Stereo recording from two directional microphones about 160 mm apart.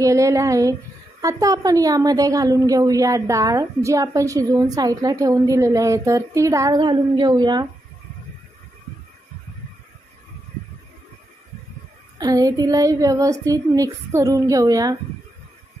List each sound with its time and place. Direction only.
0.0 s a woman's voice: 20° right (ahead or behind)
12.2 s a woman's voice: 25° right (ahead or behind)